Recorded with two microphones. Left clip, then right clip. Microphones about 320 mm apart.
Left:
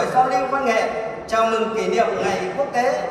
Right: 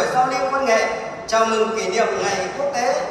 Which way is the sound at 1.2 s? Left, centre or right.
Centre.